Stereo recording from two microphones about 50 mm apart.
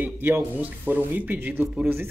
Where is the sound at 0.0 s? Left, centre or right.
Right.